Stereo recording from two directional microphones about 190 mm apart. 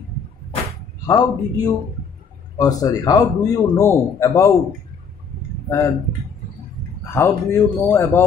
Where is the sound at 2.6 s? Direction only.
20° left (ahead or behind).